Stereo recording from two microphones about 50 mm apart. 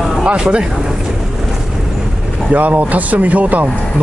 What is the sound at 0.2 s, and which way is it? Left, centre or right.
Speech, right.